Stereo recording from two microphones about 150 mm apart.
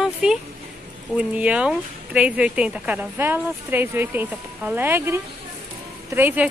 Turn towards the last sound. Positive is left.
turn(degrees=-10)  # may be behind; listen again after turning